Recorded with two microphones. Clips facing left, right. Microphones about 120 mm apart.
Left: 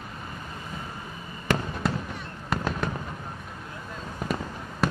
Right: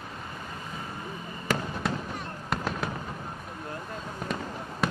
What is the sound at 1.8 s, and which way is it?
Fireworks, centre (ahead or behind).